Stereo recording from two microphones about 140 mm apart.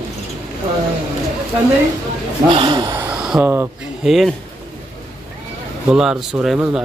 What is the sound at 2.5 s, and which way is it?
Speech, 35° right (ahead or behind).